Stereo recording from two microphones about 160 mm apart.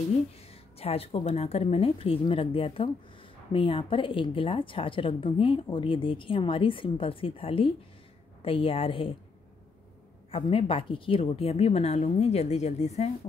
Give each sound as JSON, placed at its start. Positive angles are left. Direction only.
{"t": 0.3, "sound": "a woman's voice", "side_deg": 40}
{"t": 10.3, "sound": "a woman's voice", "side_deg": 35}